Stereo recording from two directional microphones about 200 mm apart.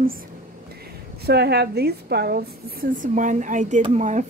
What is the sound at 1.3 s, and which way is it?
A woman's voice, 55° right (ahead or behind).